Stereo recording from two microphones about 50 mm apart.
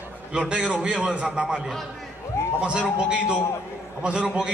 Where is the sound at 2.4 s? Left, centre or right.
Left.